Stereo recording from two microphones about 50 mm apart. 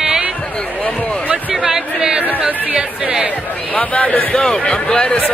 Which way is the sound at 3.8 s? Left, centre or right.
Left.